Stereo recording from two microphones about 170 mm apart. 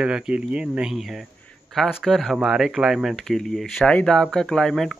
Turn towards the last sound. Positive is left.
turn(degrees=0)  # may be behind; listen again after turning